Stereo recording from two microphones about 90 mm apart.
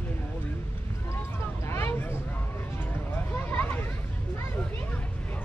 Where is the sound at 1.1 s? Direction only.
30° left (ahead or behind).